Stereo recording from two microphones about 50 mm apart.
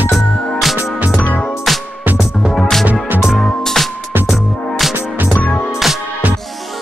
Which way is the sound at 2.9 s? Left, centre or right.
Right.